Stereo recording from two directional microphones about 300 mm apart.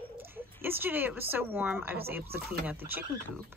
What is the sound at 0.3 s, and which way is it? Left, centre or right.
Speech, centre.